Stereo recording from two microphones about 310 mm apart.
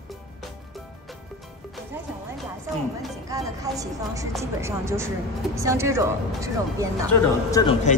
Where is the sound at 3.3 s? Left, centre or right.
Centre.